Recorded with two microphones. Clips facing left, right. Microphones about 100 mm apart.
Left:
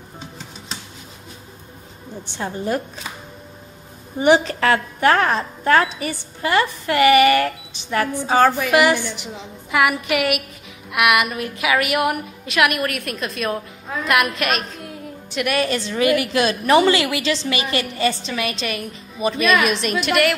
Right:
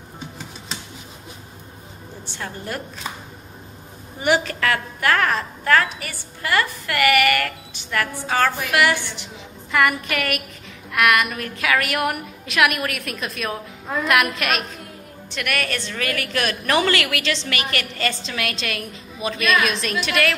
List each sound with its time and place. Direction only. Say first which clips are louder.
2.3 s a woman's voice: left 7 dB; 20° left (ahead or behind)
4.2 s a woman's voice: left 5 dB; 25° left (ahead or behind); by 14.6 s centre (ahead or behind)
15.3 s a woman's voice: left 5 dB; 20° left (ahead or behind)
18.2 s a woman's voice: left 3 dB; 5° left (ahead or behind)